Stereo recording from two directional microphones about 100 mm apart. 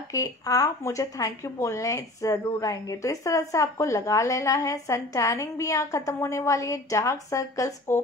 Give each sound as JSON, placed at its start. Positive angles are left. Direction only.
{"t": 0.1, "sound": "speech", "side_deg": 35}